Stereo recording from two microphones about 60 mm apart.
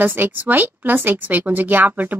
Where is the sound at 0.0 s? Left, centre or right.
Right.